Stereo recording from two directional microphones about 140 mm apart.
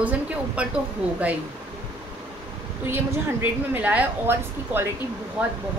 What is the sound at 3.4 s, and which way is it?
A woman's voice, 15° right (ahead or behind).